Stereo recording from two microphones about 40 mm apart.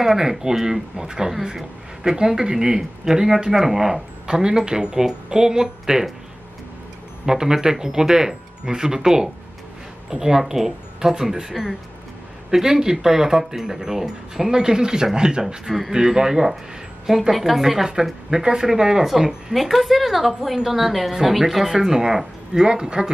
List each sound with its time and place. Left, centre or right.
0.0 s speech: centre
7.2 s speech: centre
15.4 s speech: centre